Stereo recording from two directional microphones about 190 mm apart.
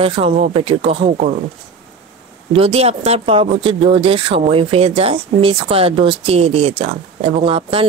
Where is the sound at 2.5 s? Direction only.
30° right (ahead or behind).